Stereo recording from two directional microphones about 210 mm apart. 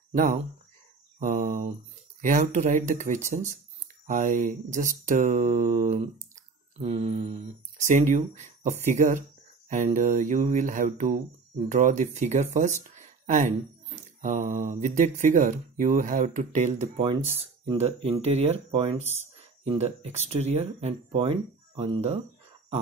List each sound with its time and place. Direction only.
0.1 s speech: 40° right (ahead or behind)